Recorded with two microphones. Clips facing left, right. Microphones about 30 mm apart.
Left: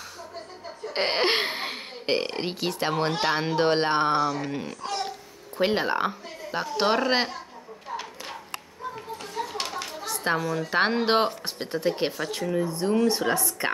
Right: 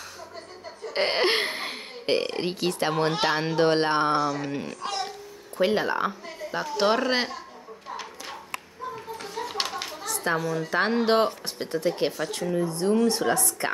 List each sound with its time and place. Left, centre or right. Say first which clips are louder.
0.8 s speech: right 1 dB; centre
5.6 s speech: even; left
8.9 s children playing: left 2 dB; centre
10.0 s a sound: even; left
10.4 s speech: even; centre
10.7 s speech: even; left